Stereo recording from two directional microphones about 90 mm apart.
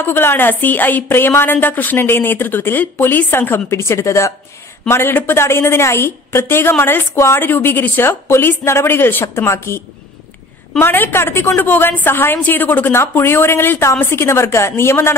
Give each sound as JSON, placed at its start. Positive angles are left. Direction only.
{"t": 0.0, "sound": "a woman's voice", "side_deg": 25}
{"t": 10.8, "sound": "a woman's voice", "side_deg": 25}